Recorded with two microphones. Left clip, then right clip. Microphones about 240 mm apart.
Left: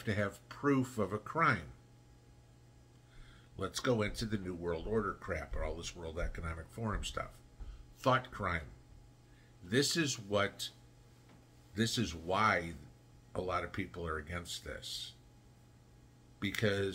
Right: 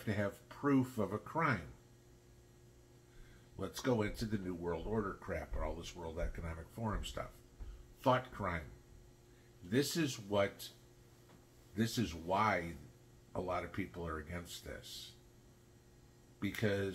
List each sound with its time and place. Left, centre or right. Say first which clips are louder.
0.0 s speech: left 2 dB; centre
3.5 s speech: left 3 dB; centre
9.7 s speech: left 3 dB; centre
11.7 s speech: left 3 dB; centre
16.3 s speech: left 3 dB; centre